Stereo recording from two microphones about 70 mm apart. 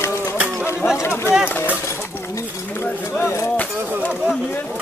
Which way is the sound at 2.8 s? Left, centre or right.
Left.